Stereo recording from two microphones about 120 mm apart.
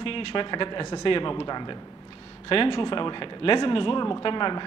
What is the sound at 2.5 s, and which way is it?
Speech, 50° left (ahead or behind).